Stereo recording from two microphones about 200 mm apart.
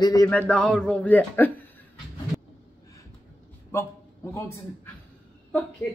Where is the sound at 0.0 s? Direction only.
15° left (ahead or behind).